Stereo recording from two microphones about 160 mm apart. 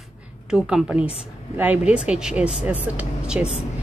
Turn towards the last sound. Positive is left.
turn(degrees=-5)  # may be behind; listen again after turning